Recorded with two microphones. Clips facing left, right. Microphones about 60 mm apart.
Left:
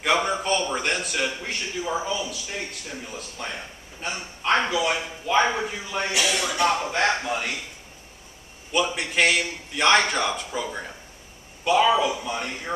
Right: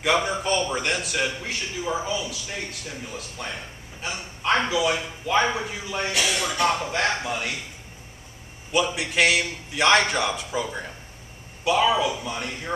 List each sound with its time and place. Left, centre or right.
0.2 s a man's voice: centre
3.4 s a man's voice: centre
8.9 s a man's voice: centre